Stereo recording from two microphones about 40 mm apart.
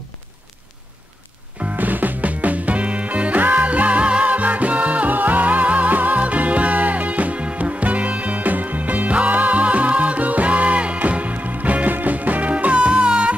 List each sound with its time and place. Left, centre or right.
1.6 s music: right